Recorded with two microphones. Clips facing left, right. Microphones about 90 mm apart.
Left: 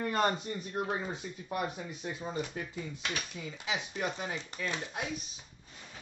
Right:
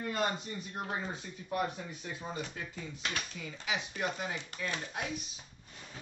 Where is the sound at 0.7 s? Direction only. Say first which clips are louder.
Left 3 dB; 20° left (ahead or behind).